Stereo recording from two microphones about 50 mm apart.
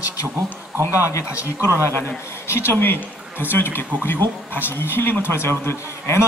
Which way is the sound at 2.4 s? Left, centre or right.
Left.